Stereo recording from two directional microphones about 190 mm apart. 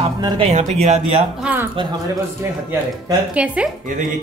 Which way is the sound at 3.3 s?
5° right (ahead or behind).